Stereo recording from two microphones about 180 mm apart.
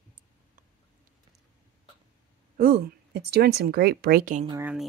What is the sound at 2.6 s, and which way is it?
Speech, 60° right (ahead or behind).